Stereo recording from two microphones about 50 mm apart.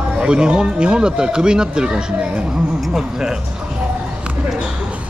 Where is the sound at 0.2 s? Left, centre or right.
Centre.